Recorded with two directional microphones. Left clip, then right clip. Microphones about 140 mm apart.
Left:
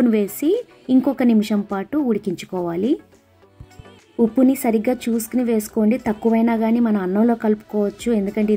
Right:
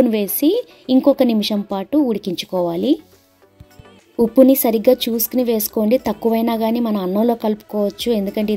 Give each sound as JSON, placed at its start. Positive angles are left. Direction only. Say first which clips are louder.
{"t": 0.0, "sound": "a woman's voice", "louder": "right 3 dB", "side_deg": -45}
{"t": 4.2, "sound": "a woman's voice", "louder": "right 5 dB", "side_deg": -55}